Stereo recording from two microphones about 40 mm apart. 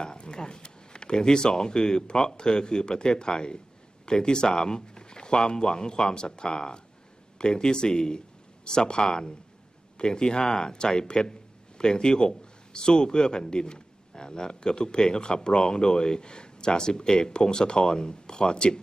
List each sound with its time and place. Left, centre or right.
0.0 s speech: centre